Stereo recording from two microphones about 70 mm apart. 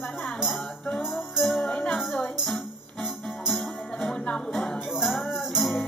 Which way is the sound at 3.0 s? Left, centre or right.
Left.